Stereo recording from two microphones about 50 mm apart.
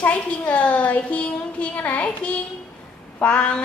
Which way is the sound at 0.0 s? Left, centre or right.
Left.